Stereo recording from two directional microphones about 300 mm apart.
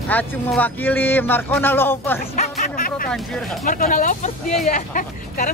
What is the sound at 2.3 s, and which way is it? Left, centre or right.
Music, left.